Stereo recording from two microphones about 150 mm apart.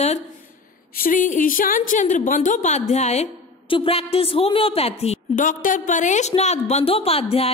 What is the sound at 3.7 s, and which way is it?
A woman's voice, 40° left (ahead or behind).